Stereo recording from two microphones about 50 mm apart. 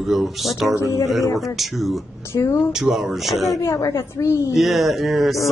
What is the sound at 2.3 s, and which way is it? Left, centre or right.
Speech, left.